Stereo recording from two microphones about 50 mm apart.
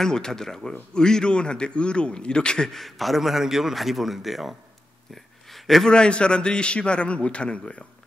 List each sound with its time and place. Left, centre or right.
0.0 s a man's voice: centre
2.8 s a man's voice: centre
5.1 s a sound: centre
5.9 s a man's voice: centre